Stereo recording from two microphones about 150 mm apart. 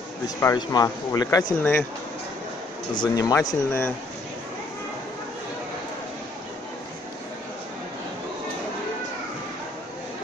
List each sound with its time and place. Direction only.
0.4 s speech: 25° left (ahead or behind)
1.6 s speech: 10° left (ahead or behind)
3.0 s speech: 25° left (ahead or behind)